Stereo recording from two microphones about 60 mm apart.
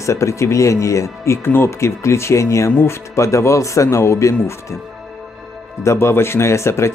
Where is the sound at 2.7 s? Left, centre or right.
Left.